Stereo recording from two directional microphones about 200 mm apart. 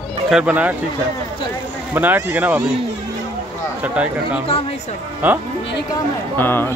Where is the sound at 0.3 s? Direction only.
5° right (ahead or behind).